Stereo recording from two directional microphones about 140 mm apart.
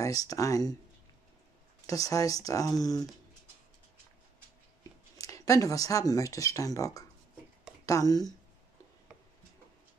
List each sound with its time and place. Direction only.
0.0 s speech: 25° left (ahead or behind)
1.9 s speech: 25° left (ahead or behind)
5.1 s speech: 25° left (ahead or behind)